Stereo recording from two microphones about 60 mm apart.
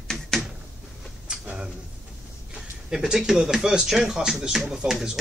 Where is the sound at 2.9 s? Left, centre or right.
Centre.